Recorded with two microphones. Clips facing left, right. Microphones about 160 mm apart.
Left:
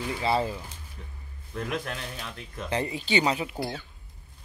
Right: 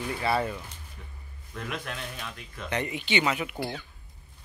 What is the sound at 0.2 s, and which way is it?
Speech, 25° left (ahead or behind).